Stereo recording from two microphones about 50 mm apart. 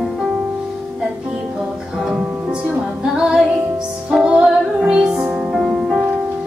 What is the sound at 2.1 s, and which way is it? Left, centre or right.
Music, centre.